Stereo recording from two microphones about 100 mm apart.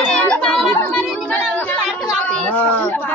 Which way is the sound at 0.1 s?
10° left (ahead or behind).